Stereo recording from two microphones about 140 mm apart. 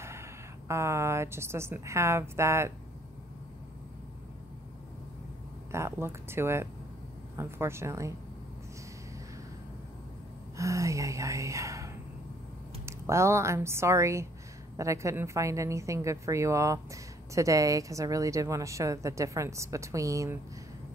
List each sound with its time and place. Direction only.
0.0 s a woman's voice: 20° right (ahead or behind)
5.7 s a woman's voice: 20° right (ahead or behind)
10.6 s a woman's voice: 20° right (ahead or behind)